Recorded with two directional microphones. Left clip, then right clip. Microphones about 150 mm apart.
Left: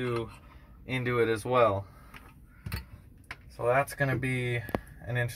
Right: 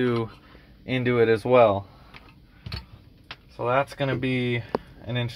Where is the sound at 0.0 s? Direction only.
85° right.